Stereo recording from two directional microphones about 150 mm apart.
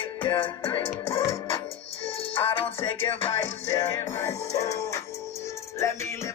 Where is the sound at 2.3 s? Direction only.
35° left (ahead or behind).